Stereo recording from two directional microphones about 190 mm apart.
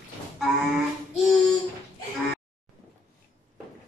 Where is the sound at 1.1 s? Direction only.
Centre (ahead or behind).